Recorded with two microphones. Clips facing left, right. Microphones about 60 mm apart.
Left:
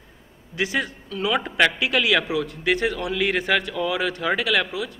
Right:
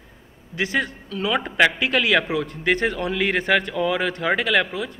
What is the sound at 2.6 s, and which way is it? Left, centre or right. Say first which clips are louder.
A man's voice: right 2 dB; centre.